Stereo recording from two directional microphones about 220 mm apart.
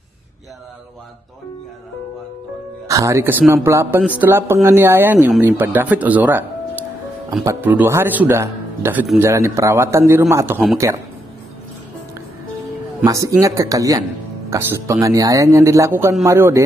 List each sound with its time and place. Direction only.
2.9 s a man's voice: 15° right (ahead or behind)
13.0 s a man's voice: 15° right (ahead or behind)